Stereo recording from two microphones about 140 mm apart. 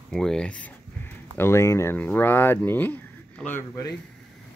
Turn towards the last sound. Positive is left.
turn(degrees=20)  # may be behind; listen again after turning